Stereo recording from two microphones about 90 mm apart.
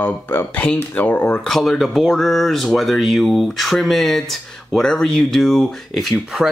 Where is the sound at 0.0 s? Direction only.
20° left (ahead or behind).